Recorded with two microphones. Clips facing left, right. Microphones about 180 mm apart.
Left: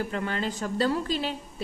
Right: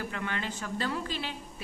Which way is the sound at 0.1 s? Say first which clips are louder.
Left 5 dB; 35° left (ahead or behind).